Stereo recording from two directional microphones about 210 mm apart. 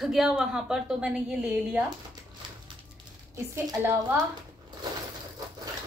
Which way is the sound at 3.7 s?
15° right (ahead or behind).